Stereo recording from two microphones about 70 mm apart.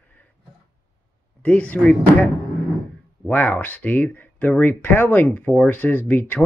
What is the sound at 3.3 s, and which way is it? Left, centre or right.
Speech, left.